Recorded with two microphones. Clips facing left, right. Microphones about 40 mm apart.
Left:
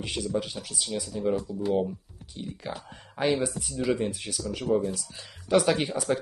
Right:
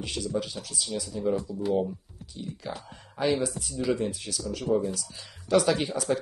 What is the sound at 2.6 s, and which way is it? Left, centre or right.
Speech, centre.